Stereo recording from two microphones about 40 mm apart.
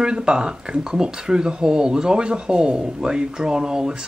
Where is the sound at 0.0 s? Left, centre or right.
Right.